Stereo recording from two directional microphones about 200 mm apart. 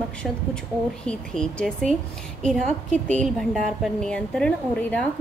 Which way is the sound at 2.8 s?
35° right (ahead or behind).